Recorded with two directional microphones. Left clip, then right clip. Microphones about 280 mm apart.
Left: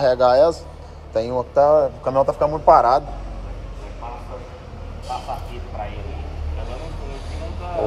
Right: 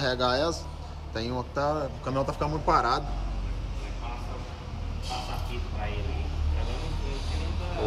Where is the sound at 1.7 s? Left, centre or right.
Centre.